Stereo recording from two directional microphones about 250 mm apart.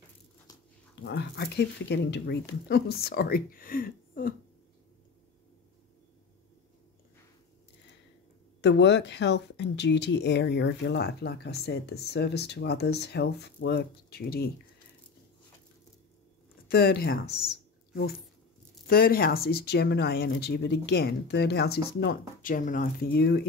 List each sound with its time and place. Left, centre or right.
1.0 s speech: left
8.5 s speech: left
16.6 s speech: left
18.9 s speech: left